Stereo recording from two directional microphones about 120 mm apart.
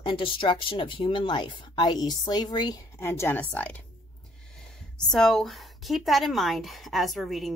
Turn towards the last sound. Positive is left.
turn(degrees=0)  # may be behind; listen again after turning